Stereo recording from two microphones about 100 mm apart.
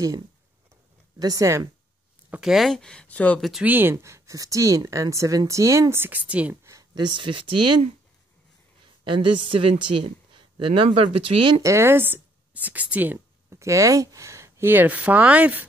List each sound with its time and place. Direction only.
1.2 s speech: 35° right (ahead or behind)
2.4 s speech: centre (ahead or behind)
3.3 s speech: centre (ahead or behind)
3.6 s a woman's voice: 20° right (ahead or behind)
3.9 s a woman's voice: 30° right (ahead or behind); by 6.5 s 15° right (ahead or behind)
6.6 s a sound: 30° right (ahead or behind)
7.0 s speech: 50° right (ahead or behind)
9.0 s a woman's voice: 55° right (ahead or behind)
11.6 s speech: 25° right (ahead or behind)
13.5 s speech: 30° right (ahead or behind); by 15.6 s 15° right (ahead or behind)